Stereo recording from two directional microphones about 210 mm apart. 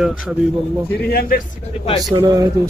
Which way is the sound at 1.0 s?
45° left (ahead or behind).